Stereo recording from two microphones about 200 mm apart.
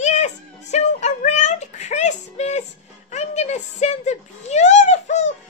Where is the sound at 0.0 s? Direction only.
35° left (ahead or behind).